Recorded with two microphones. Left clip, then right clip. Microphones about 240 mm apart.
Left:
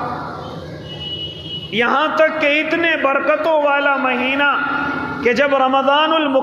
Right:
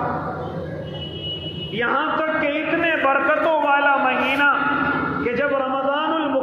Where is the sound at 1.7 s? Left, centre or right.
Left.